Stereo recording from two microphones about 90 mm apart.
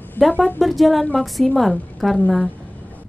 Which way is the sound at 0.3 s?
20° left (ahead or behind).